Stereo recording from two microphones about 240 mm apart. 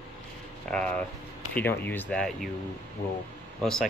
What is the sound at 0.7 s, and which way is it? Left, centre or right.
Speech, centre.